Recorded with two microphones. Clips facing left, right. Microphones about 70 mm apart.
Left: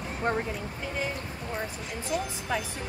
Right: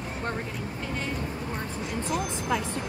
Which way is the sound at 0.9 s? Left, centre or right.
Centre.